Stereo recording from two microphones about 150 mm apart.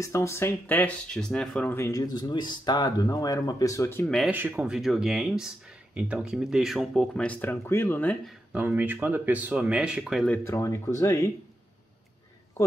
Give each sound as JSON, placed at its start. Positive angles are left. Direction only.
{"t": 0.0, "sound": "speech", "side_deg": 20}
{"t": 1.8, "sound": "speech", "side_deg": 20}
{"t": 4.3, "sound": "speech", "side_deg": -15}
{"t": 8.6, "sound": "speech", "side_deg": -15}
{"t": 10.4, "sound": "speech", "side_deg": 20}
{"t": 12.6, "sound": "a man's voice", "side_deg": 20}